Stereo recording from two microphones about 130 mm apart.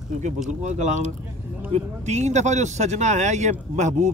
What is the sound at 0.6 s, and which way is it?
Speech, 65° right (ahead or behind).